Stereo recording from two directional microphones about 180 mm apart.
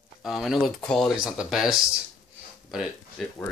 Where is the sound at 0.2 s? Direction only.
Centre (ahead or behind).